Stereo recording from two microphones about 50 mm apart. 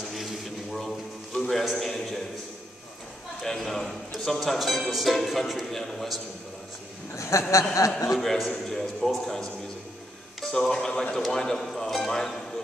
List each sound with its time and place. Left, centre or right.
0.1 s a sound: centre
3.4 s speech: centre
7.2 s speech: left
8.2 s speech: centre